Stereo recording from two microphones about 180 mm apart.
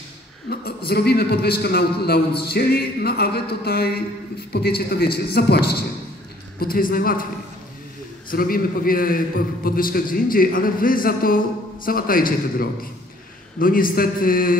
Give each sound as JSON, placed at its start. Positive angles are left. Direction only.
{"t": 0.5, "sound": "a man's voice", "side_deg": 60}
{"t": 8.3, "sound": "a man's voice", "side_deg": 55}